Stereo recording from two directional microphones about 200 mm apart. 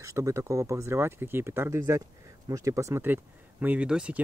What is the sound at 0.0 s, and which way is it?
Speech, 15° right (ahead or behind).